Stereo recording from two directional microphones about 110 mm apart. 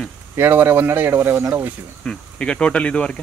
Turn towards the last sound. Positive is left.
turn(degrees=10)  # may be behind; listen again after turning